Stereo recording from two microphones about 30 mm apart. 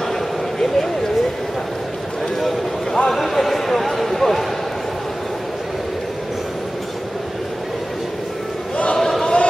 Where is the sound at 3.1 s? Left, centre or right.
Centre.